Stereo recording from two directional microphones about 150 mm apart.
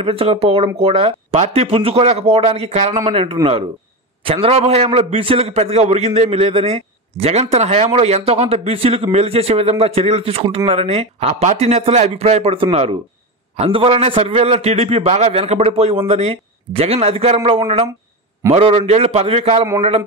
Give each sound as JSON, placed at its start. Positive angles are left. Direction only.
{"t": 0.0, "sound": "a man's voice", "side_deg": -40}